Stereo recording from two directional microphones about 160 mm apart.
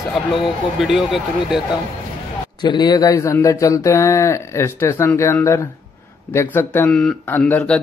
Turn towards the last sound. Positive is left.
turn(degrees=10)  # may be behind; listen again after turning